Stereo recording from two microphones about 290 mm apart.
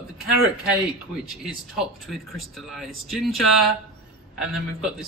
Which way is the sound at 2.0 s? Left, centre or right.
Centre.